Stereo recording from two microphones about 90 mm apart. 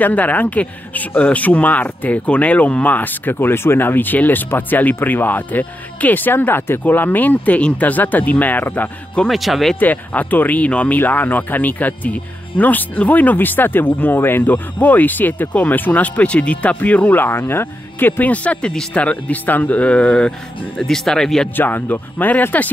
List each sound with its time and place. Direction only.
0.0 s speech: 20° left (ahead or behind)
9.3 s speech: centre (ahead or behind)
9.8 s speech: 20° left (ahead or behind)
21.5 s speech: 20° left (ahead or behind)